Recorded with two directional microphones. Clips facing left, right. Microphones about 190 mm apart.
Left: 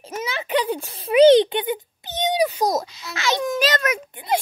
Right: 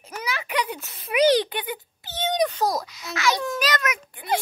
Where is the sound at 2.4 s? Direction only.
10° left (ahead or behind).